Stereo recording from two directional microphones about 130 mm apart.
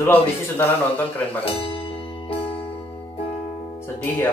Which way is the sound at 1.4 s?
45° left (ahead or behind).